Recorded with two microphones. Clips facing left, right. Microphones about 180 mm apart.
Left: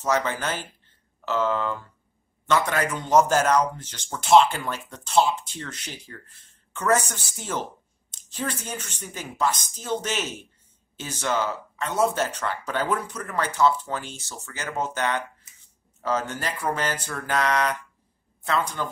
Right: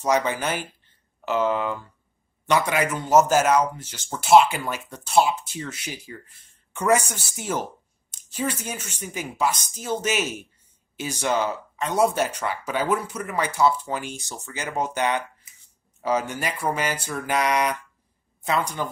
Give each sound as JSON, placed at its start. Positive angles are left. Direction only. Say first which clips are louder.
{"t": 0.0, "sound": "speech", "louder": "right 2 dB", "side_deg": -15}